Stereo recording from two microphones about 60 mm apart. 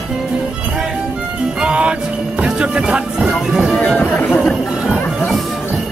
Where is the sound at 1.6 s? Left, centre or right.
Centre.